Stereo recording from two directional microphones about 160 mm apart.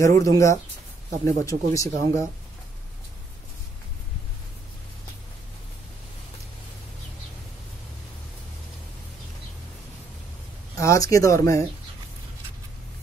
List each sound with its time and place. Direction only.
0.0 s speech: 20° left (ahead or behind)
10.8 s speech: 20° left (ahead or behind)